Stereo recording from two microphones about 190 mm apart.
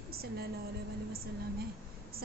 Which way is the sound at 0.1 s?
55° right (ahead or behind).